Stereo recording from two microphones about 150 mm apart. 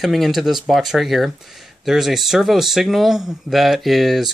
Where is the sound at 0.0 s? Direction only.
Centre (ahead or behind).